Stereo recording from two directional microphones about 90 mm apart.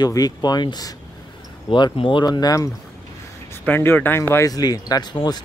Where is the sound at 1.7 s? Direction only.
65° left (ahead or behind); by 2.7 s 45° left (ahead or behind).